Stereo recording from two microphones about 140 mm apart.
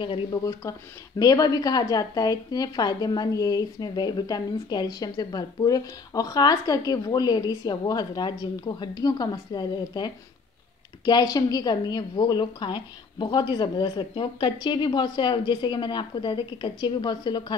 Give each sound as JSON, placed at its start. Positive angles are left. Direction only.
{"t": 0.0, "sound": "a woman's voice", "side_deg": 35}
{"t": 0.5, "sound": "a woman's voice", "side_deg": 25}